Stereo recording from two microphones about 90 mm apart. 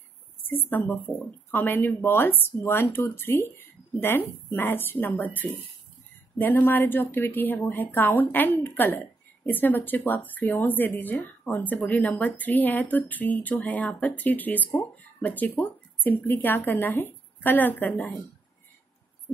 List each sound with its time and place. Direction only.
0.5 s speech: 20° left (ahead or behind)